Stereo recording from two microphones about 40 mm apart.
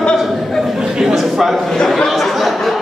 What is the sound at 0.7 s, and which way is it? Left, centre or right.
Speech, centre.